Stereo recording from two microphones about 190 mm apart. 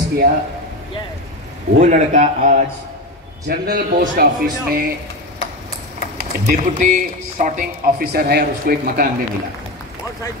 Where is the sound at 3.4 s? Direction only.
60° right (ahead or behind).